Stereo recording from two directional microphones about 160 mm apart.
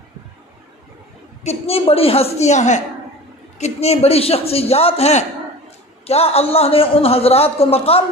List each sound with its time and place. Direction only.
1.4 s a woman's voice: 40° left (ahead or behind)